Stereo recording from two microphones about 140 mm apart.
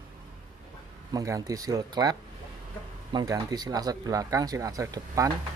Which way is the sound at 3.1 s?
30° right (ahead or behind).